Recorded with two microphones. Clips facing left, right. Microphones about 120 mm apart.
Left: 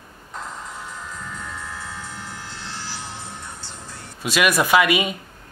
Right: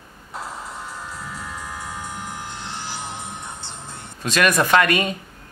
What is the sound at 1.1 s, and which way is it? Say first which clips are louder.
Music: right 1 dB; 10° right (ahead or behind).